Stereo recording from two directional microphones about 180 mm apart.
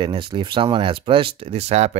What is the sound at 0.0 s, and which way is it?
Speech, 25° right (ahead or behind).